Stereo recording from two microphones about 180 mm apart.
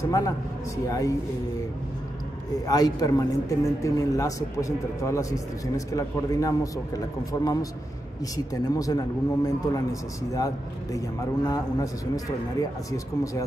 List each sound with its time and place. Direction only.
0.8 s a man's voice: 20° left (ahead or behind)
2.6 s a man's voice: 20° left (ahead or behind)
8.6 s a man's voice: 20° left (ahead or behind)